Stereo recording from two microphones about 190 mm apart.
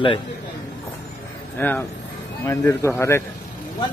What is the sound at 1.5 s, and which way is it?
A man's voice, 10° left (ahead or behind).